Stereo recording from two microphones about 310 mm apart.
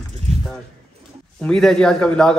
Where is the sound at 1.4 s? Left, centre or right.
Centre.